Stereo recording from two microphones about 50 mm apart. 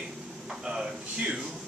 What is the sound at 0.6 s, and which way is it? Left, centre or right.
Speech, centre.